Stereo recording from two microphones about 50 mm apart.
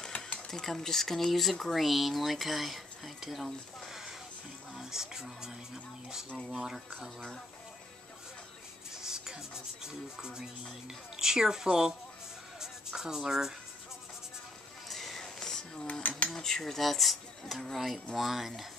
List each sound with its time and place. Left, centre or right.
0.1 s sewing machine: left
0.5 s speech: centre
6.5 s speech: centre
8.9 s music: centre
9.8 s speech: centre
12.5 s music: centre
14.9 s a sound: centre
15.9 s cutlery: left
16.3 s speech: centre